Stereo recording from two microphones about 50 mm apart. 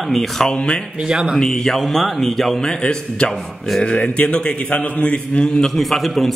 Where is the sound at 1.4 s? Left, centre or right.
Centre.